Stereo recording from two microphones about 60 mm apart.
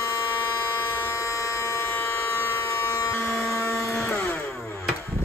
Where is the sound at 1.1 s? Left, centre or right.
Left.